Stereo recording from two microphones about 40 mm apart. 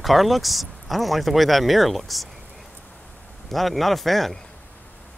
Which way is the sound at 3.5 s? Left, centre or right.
Centre.